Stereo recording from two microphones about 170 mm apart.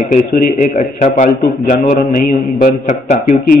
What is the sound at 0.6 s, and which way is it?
A man's voice, 45° left (ahead or behind).